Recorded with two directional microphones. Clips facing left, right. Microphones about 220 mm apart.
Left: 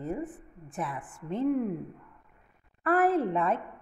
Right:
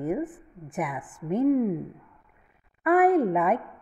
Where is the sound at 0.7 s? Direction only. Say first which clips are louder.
Right 4 dB; 15° right (ahead or behind).